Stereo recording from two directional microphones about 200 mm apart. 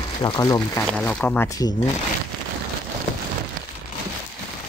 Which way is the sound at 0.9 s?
5° left (ahead or behind).